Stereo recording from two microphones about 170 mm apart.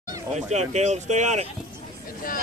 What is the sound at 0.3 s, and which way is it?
Speech, 40° right (ahead or behind).